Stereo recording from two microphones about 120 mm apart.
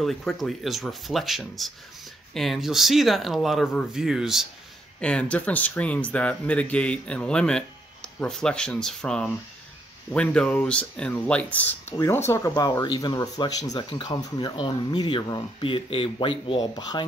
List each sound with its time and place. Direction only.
0.0 s speech: centre (ahead or behind)
5.0 s speech: 10° left (ahead or behind)
12.0 s speech: 25° left (ahead or behind)